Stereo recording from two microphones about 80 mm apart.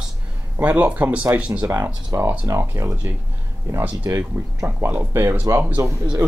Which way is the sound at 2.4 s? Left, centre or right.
Right.